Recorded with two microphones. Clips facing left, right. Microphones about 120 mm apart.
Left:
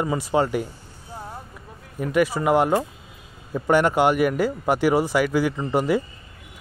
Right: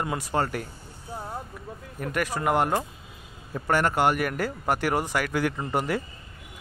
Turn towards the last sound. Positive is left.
turn(degrees=10)  # may be behind; listen again after turning